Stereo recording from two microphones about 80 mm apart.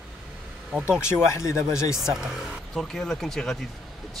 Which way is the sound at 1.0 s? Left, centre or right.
Left.